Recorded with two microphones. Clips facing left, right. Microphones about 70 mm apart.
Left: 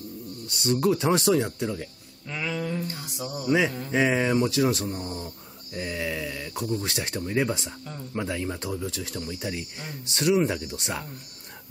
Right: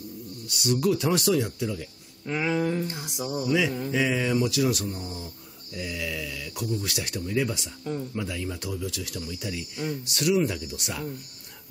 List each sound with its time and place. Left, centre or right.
0.5 s speech: left
2.2 s a sound: right
3.4 s speech: left